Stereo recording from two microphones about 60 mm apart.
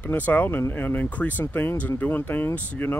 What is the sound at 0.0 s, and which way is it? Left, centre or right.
Speech, left.